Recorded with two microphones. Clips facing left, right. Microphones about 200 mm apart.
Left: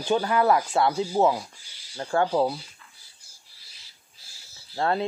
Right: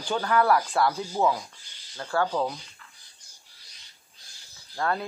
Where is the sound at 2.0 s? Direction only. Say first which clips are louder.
Left 3 dB; 30° left (ahead or behind).